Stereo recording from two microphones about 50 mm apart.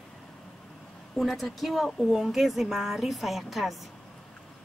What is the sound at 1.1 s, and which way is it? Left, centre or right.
A woman's voice, centre.